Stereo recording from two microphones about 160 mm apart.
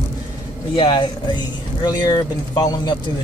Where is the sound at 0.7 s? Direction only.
30° left (ahead or behind).